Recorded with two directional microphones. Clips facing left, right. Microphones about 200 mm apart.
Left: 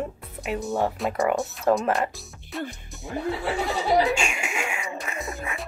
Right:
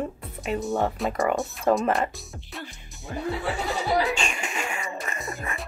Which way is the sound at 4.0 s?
5° left (ahead or behind).